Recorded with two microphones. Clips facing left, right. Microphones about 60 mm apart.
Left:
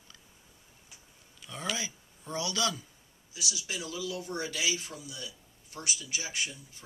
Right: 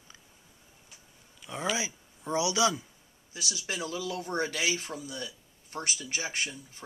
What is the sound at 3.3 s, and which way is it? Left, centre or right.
Speech, right.